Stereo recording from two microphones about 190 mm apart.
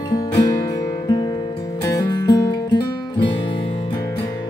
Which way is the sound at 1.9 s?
20° left (ahead or behind).